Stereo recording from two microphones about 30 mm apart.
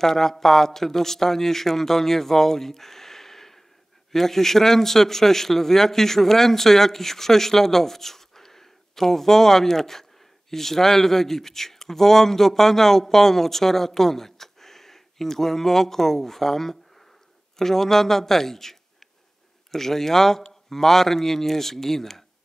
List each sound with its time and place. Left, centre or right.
0.0 s speech: centre